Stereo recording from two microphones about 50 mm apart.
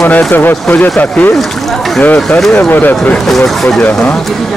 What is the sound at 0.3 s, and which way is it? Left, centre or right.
Speech, left.